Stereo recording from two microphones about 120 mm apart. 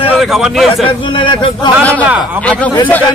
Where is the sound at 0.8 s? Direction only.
45° left (ahead or behind).